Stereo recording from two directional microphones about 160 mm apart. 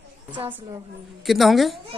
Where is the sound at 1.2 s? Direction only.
Centre (ahead or behind).